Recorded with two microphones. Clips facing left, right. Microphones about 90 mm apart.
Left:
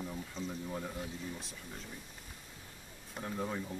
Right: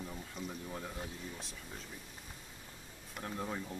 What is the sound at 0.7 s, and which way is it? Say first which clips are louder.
Speech: left 3 dB; 5° left (ahead or behind).